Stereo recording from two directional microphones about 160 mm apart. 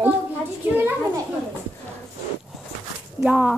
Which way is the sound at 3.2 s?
5° right (ahead or behind).